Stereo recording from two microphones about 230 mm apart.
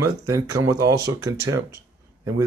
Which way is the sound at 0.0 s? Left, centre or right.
Centre.